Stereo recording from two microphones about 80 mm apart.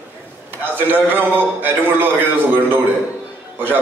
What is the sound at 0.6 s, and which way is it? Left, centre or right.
A man's voice, right.